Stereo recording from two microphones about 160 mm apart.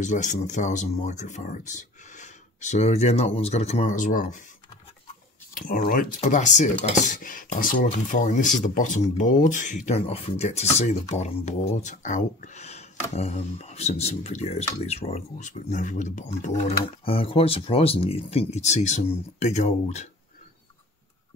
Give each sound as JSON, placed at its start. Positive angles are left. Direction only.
{"t": 0.0, "sound": "speech", "side_deg": 50}
{"t": 5.9, "sound": "speech", "side_deg": 55}
{"t": 9.8, "sound": "speech", "side_deg": 40}